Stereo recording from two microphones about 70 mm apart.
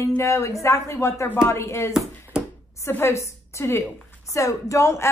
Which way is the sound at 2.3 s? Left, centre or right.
Centre.